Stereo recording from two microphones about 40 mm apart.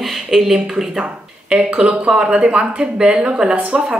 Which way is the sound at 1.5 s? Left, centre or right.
Right.